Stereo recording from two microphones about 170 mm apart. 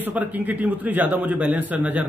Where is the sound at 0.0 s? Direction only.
10° right (ahead or behind).